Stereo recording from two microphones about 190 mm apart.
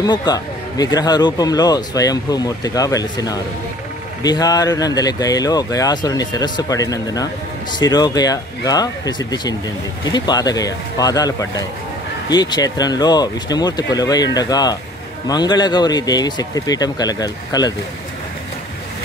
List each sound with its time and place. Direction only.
0.0 s speech: 20° left (ahead or behind)